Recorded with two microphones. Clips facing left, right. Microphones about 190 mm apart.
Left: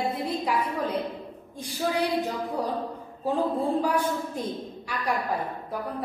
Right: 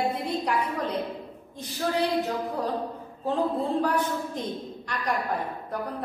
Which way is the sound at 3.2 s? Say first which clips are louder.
Left 1 dB; 10° left (ahead or behind).